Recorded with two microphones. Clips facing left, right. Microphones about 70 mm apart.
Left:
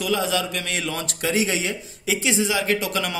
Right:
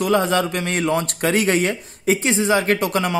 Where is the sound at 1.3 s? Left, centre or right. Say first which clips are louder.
Right 5 dB; right.